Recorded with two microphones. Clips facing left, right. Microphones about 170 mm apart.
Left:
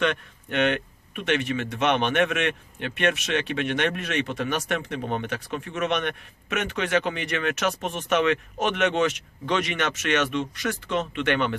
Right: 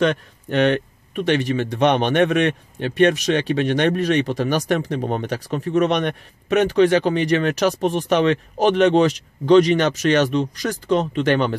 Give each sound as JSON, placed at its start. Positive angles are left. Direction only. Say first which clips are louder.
{"t": 0.0, "sound": "speech", "louder": "right 6 dB", "side_deg": -35}